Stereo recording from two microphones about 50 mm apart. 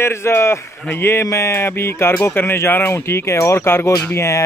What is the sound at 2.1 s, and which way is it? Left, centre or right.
Speech, left.